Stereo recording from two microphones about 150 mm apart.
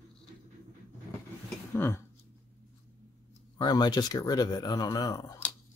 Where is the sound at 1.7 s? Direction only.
15° left (ahead or behind).